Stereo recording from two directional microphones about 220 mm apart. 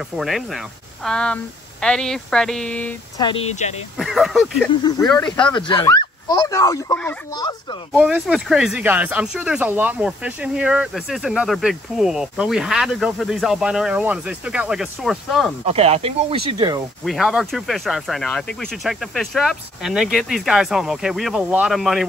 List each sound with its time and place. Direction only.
0.2 s speech: centre (ahead or behind)
3.2 s speech: 25° left (ahead or behind)
3.9 s speech: centre (ahead or behind)
4.8 s speech: 15° left (ahead or behind)
5.1 s speech: 5° left (ahead or behind)
5.5 s speech: 20° left (ahead or behind)
7.9 s speech: 5° right (ahead or behind)
15.6 s speech: 25° right (ahead or behind)
17.0 s speech: centre (ahead or behind)